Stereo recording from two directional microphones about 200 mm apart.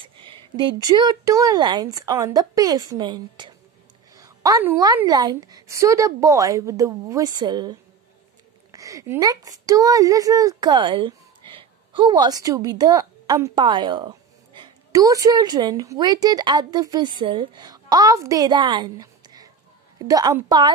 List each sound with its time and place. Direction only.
0.0 s a woman's voice: 25° right (ahead or behind)
8.7 s speech: 15° right (ahead or behind)